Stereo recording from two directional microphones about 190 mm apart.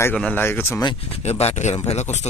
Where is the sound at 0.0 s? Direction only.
10° left (ahead or behind).